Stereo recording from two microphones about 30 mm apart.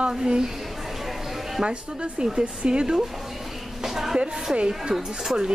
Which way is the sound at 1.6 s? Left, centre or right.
Right.